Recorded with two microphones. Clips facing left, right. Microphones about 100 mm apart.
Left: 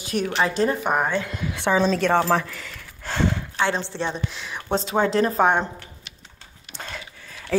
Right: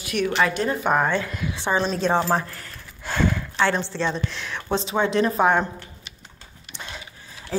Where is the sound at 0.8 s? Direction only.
15° left (ahead or behind).